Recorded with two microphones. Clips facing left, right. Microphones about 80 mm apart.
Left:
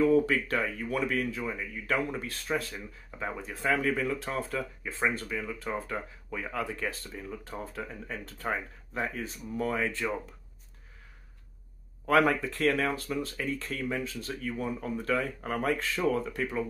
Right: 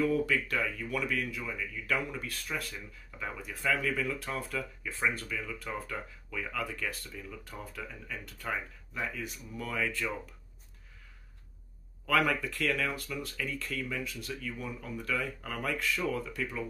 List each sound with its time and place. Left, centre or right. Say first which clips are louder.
0.0 s speech: left 5 dB; left
12.1 s speech: left 4 dB; left